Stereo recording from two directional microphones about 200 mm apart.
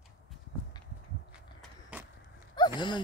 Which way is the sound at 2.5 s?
20° left (ahead or behind).